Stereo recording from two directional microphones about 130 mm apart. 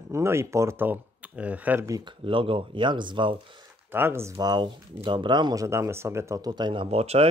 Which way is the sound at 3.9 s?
20° right (ahead or behind).